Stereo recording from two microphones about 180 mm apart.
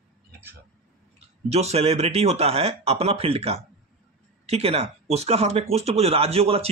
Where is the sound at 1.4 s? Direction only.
35° right (ahead or behind).